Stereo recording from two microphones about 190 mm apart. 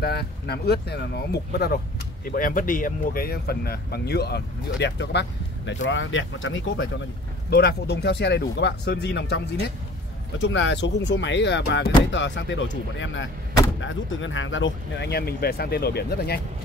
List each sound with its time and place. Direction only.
0.0 s speech: 60° left (ahead or behind)
2.2 s speech: 45° left (ahead or behind); by 5.2 s 65° left (ahead or behind)
5.7 s speech: 80° left
7.4 s speech: 60° left (ahead or behind)
10.4 s speech: 70° left (ahead or behind)
13.7 s speech: 90° left; by 16.3 s 60° left (ahead or behind)